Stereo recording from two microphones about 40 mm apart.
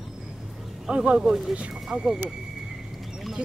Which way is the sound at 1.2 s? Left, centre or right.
Centre.